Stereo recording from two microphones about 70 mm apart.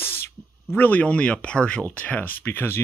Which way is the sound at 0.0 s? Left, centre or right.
Left.